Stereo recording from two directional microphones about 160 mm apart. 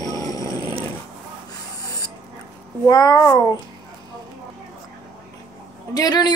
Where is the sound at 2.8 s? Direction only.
25° left (ahead or behind).